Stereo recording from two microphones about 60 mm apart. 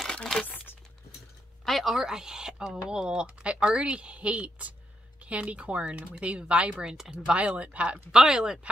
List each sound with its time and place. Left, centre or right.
0.1 s speech: centre
1.7 s speech: centre; by 8.0 s right
8.1 s speech: centre